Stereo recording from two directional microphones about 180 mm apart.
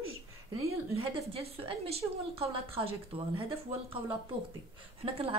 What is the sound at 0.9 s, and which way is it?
A woman's voice, 30° right (ahead or behind).